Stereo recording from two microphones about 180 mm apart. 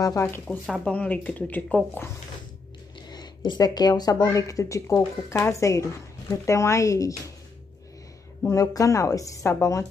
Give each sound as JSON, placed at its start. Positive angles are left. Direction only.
{"t": 0.0, "sound": "speech", "side_deg": 15}
{"t": 3.1, "sound": "speech", "side_deg": 25}
{"t": 8.4, "sound": "speech", "side_deg": 15}